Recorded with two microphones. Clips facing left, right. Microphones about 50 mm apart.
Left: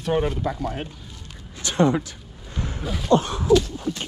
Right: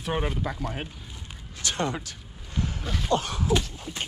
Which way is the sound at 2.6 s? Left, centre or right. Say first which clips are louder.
Even; left.